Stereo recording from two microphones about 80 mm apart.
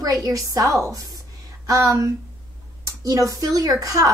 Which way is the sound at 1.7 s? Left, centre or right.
Right.